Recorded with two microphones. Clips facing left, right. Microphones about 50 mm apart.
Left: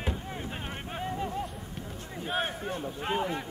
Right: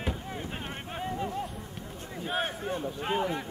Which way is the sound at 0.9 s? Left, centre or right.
Centre.